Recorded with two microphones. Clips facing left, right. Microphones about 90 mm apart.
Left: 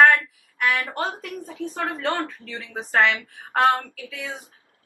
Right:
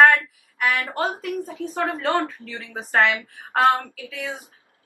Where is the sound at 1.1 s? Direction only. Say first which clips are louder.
Right 6 dB; 15° right (ahead or behind).